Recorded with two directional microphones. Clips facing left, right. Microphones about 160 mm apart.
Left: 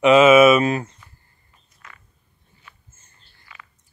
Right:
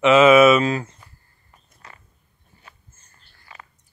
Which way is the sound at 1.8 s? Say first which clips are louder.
Right 1 dB; 35° right (ahead or behind).